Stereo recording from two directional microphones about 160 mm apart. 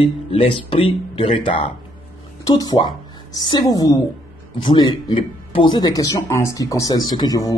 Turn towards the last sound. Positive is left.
turn(degrees=25)  # may be behind; listen again after turning